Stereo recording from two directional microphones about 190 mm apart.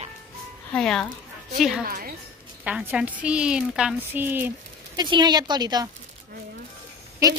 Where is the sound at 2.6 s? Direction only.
5° right (ahead or behind).